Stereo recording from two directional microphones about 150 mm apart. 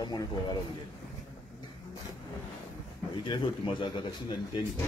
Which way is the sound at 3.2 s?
30° left (ahead or behind).